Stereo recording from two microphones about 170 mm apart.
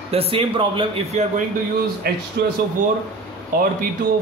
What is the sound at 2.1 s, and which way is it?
Speech, 65° right (ahead or behind).